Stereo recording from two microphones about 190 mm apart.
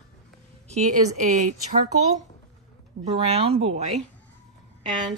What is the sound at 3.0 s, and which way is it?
Speech, 35° right (ahead or behind).